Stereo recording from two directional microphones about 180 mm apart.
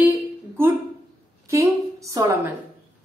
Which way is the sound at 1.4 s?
15° right (ahead or behind).